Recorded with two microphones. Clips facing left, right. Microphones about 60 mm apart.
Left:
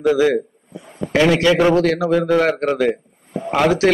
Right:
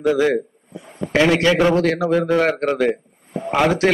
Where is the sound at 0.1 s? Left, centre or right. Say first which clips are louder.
Left 2 dB; centre.